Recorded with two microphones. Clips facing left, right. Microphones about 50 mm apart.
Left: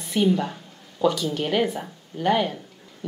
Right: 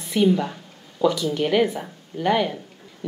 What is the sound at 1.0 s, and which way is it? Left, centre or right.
Speech, left.